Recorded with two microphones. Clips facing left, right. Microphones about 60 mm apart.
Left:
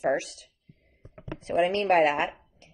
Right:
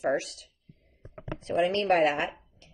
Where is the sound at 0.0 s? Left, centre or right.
Left.